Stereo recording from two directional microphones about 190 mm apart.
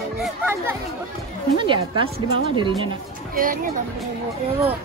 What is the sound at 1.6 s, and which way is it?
Speech, 25° right (ahead or behind).